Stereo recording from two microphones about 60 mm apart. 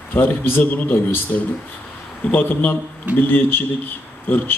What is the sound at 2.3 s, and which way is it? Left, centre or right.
Speech, left.